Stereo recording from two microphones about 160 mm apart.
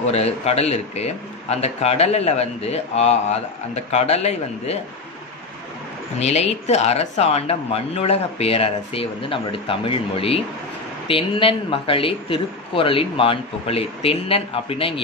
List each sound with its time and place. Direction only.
0.1 s a man's voice: 40° left (ahead or behind)
6.1 s a man's voice: 40° left (ahead or behind)